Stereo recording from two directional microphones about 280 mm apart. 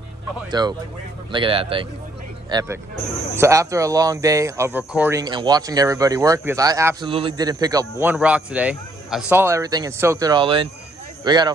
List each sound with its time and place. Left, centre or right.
0.5 s speech: centre